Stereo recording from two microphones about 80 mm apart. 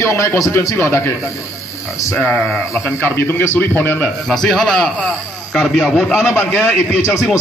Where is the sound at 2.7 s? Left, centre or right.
Left.